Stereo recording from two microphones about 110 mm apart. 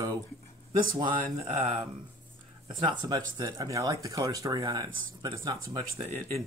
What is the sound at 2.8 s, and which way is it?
Speech, 40° right (ahead or behind).